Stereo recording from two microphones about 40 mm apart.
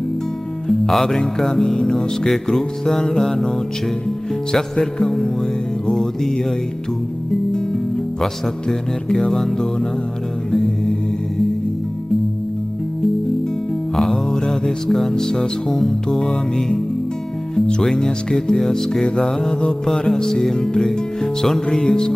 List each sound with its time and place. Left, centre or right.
0.7 s music: centre
8.2 s music: centre
13.9 s music: centre
21.6 s speech: left